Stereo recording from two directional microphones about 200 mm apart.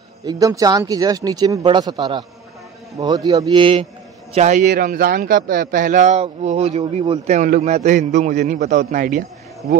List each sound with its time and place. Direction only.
0.2 s speech: 15° right (ahead or behind)
3.3 s speech: 20° right (ahead or behind)
4.3 s speech: 35° right (ahead or behind)